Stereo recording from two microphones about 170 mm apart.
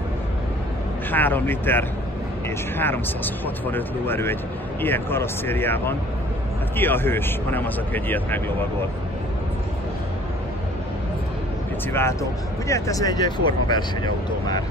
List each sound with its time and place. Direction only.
1.1 s speech: 10° left (ahead or behind)
11.9 s speech: 15° left (ahead or behind)